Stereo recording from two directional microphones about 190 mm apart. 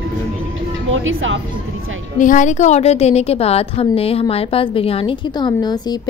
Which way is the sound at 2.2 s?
40° left (ahead or behind).